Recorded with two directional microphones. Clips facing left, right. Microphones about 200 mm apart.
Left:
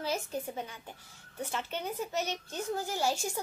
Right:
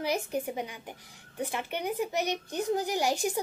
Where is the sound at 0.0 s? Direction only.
15° right (ahead or behind).